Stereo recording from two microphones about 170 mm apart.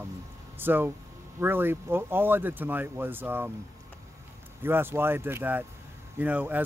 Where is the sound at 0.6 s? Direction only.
10° right (ahead or behind).